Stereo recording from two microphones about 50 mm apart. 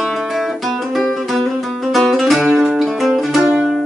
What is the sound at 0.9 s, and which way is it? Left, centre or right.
Music, centre.